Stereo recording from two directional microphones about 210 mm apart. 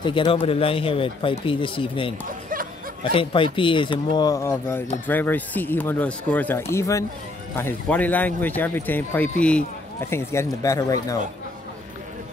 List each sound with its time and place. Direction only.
0.0 s speech: 25° left (ahead or behind)
2.2 s music: 40° right (ahead or behind)
3.0 s speech: 25° left (ahead or behind)